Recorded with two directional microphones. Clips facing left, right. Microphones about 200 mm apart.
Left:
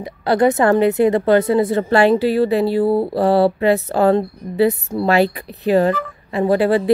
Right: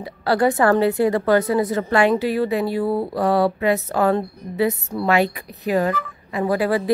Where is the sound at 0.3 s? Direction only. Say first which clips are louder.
Left 3 dB; 20° left (ahead or behind).